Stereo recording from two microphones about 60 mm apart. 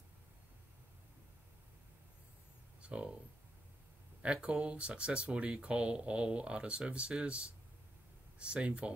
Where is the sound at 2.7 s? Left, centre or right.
Centre.